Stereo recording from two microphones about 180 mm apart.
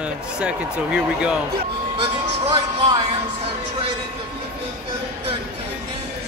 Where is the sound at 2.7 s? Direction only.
25° right (ahead or behind).